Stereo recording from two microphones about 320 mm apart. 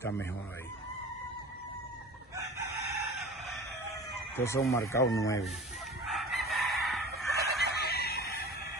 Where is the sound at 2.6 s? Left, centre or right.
Centre.